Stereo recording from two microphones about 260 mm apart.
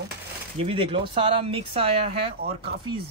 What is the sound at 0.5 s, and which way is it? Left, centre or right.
Speech, right.